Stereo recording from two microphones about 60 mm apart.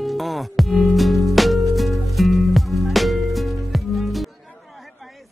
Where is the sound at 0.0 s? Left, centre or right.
Centre.